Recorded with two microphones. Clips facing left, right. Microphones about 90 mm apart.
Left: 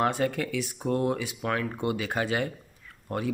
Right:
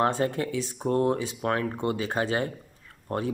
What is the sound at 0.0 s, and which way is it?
A man's voice, 30° right (ahead or behind).